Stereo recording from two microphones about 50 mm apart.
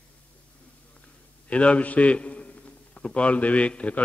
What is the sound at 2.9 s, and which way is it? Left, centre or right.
Mantra, left.